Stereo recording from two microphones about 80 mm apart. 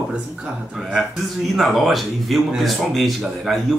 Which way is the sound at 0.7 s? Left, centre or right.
Centre.